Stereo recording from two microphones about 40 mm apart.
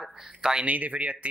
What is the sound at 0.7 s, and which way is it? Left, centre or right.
Speech, right.